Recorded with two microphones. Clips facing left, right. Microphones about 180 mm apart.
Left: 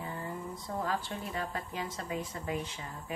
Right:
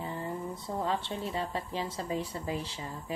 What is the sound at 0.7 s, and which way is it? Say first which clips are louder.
Speech: right 2 dB; 25° right (ahead or behind).